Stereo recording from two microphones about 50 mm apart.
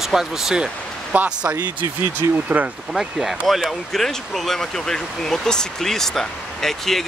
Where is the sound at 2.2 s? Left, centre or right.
Right.